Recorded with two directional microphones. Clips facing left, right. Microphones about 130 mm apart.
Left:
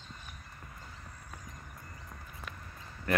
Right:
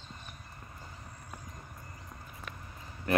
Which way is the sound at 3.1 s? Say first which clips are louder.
Right 2 dB; 20° right (ahead or behind).